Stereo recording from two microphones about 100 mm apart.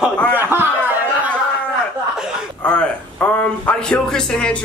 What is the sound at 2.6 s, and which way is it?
Speech, 10° left (ahead or behind).